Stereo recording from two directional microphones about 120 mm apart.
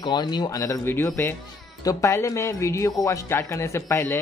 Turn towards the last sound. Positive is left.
turn(degrees=25)  # may be behind; listen again after turning